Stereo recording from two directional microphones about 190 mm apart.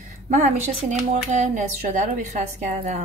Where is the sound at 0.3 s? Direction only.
40° right (ahead or behind).